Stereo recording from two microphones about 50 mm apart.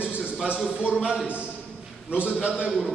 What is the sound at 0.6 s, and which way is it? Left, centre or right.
A man's voice, centre.